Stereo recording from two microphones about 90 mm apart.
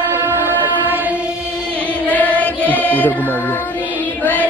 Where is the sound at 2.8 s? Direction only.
20° left (ahead or behind).